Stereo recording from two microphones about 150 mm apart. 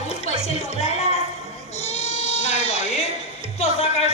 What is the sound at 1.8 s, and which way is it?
Sheep, 45° left (ahead or behind).